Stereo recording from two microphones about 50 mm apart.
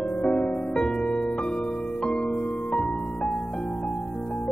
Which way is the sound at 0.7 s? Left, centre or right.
Centre.